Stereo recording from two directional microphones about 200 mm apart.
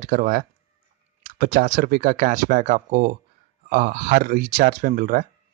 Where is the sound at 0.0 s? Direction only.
45° right (ahead or behind).